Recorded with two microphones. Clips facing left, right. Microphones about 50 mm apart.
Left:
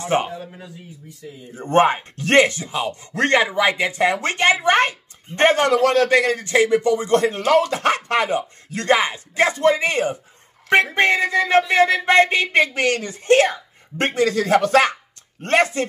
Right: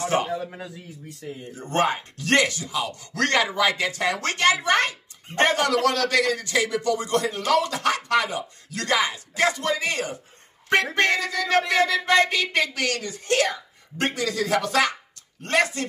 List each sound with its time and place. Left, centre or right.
1.5 s speech: left